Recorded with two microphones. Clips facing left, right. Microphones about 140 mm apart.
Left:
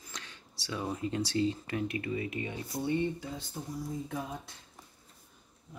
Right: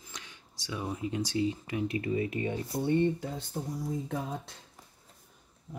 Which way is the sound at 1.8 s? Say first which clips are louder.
Right 6 dB; 35° right (ahead or behind).